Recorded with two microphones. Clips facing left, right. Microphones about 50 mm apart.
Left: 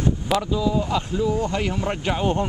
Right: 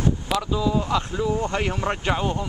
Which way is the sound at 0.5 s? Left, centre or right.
Centre.